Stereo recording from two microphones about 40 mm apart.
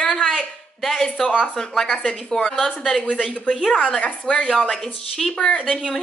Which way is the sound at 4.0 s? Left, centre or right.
Left.